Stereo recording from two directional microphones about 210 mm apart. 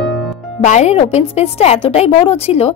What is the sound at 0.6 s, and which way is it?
A woman's voice, 35° left (ahead or behind).